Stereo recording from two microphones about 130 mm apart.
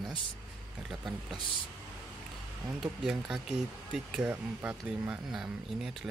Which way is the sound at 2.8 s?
5° right (ahead or behind).